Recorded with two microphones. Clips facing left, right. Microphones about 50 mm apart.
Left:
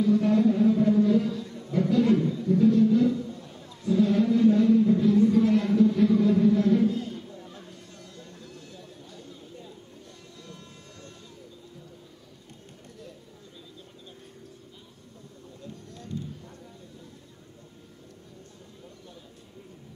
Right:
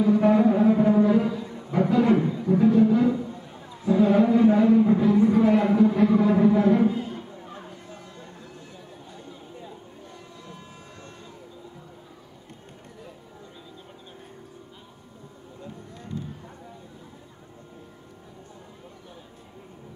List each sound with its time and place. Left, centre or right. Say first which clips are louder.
0.0 s music: right 3 dB; centre
15.6 s music: right 2 dB; centre